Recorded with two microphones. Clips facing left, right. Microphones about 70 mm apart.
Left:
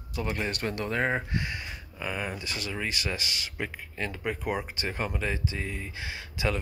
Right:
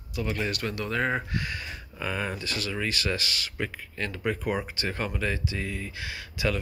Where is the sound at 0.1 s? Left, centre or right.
Left.